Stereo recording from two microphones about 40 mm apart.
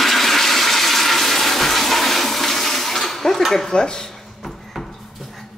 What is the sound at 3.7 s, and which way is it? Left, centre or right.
Speech, centre.